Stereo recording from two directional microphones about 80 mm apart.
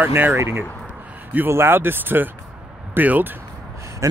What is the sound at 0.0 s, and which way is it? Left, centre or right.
Speech, right.